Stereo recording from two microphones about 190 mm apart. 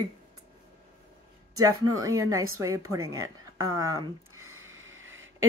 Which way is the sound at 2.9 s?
90° right.